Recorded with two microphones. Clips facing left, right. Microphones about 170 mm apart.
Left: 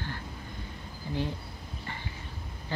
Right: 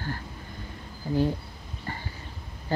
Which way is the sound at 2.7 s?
40° right (ahead or behind).